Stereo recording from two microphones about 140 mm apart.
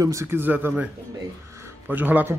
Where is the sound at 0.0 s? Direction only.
20° right (ahead or behind).